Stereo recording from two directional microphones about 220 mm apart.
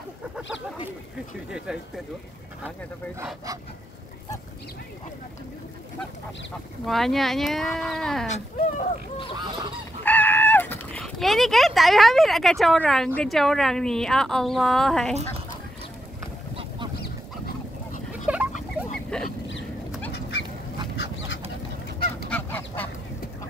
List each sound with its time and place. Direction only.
1.7 s speech: 5° right (ahead or behind)
6.9 s speech: centre (ahead or behind)
8.3 s speech: 30° left (ahead or behind)
9.4 s goose: 20° right (ahead or behind)
10.0 s speech: 10° left (ahead or behind)
18.3 s a sound: 5° right (ahead or behind)
20.1 s goose: 50° left (ahead or behind)
20.9 s duck: 45° left (ahead or behind)
22.3 s goose: 10° left (ahead or behind)